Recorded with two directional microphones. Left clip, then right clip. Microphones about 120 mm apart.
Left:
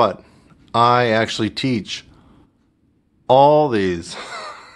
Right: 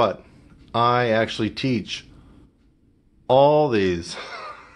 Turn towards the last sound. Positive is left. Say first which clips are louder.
# left 4 dB
turn(degrees=25)  # may be behind; listen again after turning